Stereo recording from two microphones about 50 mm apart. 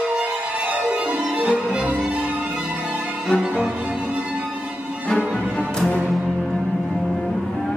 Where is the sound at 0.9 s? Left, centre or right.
Right.